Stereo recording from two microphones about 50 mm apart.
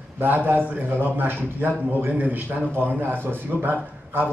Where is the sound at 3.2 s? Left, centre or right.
Right.